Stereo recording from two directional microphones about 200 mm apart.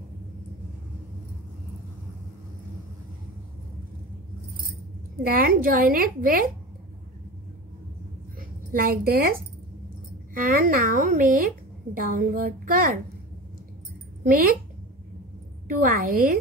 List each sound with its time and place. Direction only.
5.2 s a woman's voice: 45° right (ahead or behind)
8.4 s a woman's voice: 45° right (ahead or behind)
14.2 s a woman's voice: 45° right (ahead or behind)
15.8 s a woman's voice: 45° right (ahead or behind)